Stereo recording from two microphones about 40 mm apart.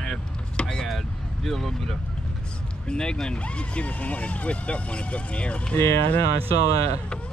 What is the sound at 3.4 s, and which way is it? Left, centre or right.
Speech, left.